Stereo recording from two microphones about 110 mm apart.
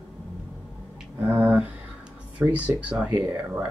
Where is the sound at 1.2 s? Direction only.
20° right (ahead or behind).